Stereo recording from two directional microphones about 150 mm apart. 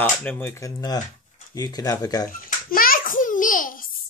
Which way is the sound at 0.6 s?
20° left (ahead or behind).